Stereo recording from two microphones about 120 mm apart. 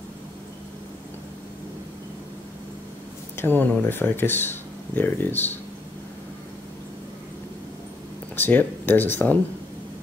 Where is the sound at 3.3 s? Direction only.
15° left (ahead or behind).